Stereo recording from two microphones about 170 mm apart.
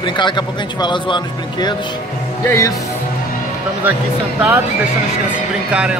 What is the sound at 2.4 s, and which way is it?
Speech, 15° left (ahead or behind).